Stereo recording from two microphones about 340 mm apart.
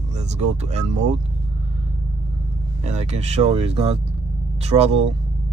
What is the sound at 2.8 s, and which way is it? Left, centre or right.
Speech, centre.